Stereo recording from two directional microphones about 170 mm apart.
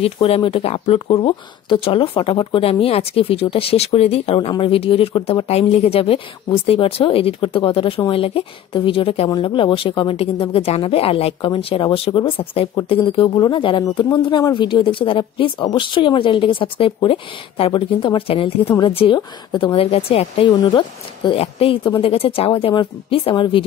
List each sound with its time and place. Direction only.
0.0 s a woman's voice: 35° left (ahead or behind)